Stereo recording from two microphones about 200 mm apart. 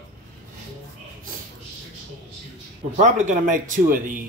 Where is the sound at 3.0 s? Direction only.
40° right (ahead or behind).